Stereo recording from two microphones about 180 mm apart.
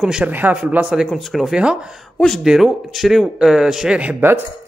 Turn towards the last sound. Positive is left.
turn(degrees=-10)  # may be behind; listen again after turning